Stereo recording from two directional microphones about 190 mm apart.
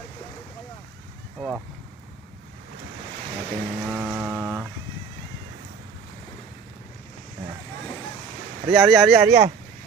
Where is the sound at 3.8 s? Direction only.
5° right (ahead or behind).